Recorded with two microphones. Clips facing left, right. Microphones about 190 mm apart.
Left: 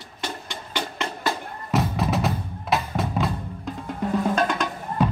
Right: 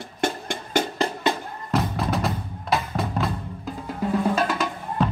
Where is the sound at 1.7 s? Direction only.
Centre (ahead or behind).